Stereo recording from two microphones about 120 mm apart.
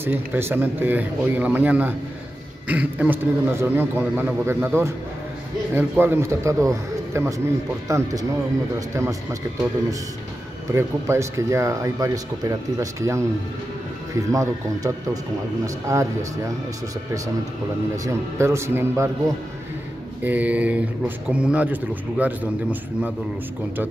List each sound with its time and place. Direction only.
0.0 s a man's voice: 15° right (ahead or behind)
10.7 s speech: 25° right (ahead or behind)
14.3 s speech: 25° right (ahead or behind)
17.9 s speech: 25° right (ahead or behind)
20.2 s a man's voice: 10° right (ahead or behind)